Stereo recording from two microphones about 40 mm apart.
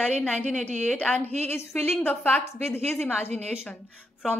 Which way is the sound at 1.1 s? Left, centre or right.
Left.